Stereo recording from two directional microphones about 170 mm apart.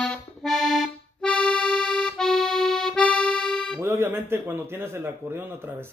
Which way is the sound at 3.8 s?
15° right (ahead or behind).